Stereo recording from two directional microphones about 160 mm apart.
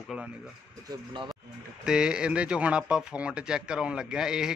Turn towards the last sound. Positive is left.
turn(degrees=-5)  # may be behind; listen again after turning